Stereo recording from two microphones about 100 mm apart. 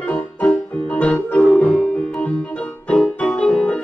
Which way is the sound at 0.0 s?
15° left (ahead or behind).